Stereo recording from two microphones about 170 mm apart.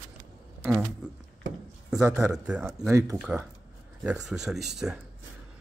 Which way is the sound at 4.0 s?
5° right (ahead or behind).